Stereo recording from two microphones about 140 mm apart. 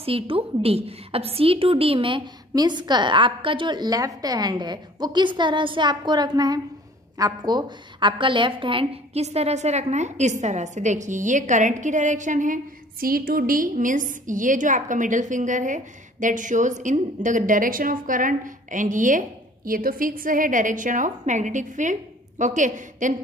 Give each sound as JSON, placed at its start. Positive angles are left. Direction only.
{"t": 0.0, "sound": "a woman's voice", "side_deg": -40}
{"t": 13.0, "sound": "a woman's voice", "side_deg": -90}